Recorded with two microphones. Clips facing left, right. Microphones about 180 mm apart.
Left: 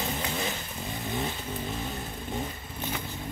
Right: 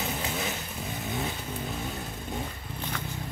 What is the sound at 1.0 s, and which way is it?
Vehicle, centre (ahead or behind).